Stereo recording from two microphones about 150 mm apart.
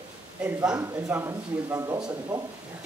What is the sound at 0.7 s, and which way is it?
Speech, 20° right (ahead or behind).